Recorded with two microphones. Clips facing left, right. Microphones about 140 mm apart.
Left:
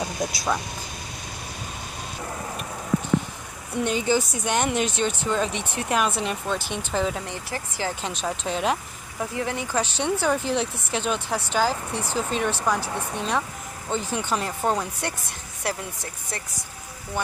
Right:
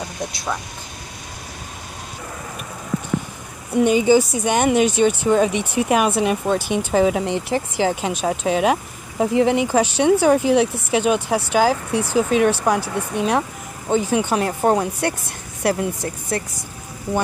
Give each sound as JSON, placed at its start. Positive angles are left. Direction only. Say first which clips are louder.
{"t": 3.7, "sound": "speech", "louder": "right 9 dB", "side_deg": -5}
{"t": 15.6, "sound": "speech", "louder": "right 10 dB", "side_deg": -60}